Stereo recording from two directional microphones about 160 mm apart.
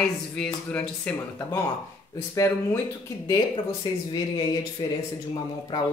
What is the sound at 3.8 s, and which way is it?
Speech, 25° left (ahead or behind).